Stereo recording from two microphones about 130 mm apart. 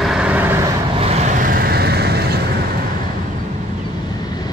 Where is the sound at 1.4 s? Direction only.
90° right.